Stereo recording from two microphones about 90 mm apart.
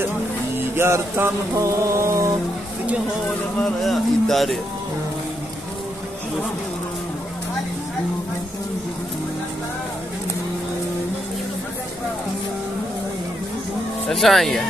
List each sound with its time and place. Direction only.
0.7 s music: 30° right (ahead or behind)
3.8 s speech: centre (ahead or behind)
14.0 s speech: centre (ahead or behind)